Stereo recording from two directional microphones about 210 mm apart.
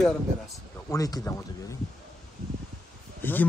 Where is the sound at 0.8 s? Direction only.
15° left (ahead or behind).